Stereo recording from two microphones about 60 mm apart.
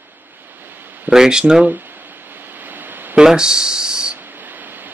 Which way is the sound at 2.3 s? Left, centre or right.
Right.